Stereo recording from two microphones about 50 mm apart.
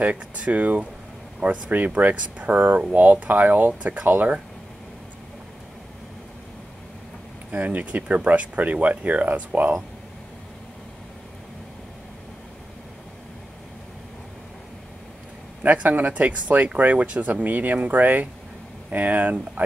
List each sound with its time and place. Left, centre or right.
0.0 s speech: right
7.5 s speech: right
15.6 s speech: right